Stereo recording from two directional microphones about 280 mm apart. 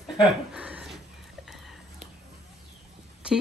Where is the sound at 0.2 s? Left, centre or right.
Centre.